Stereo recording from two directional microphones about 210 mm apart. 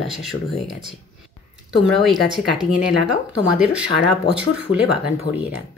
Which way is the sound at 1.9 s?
Centre (ahead or behind).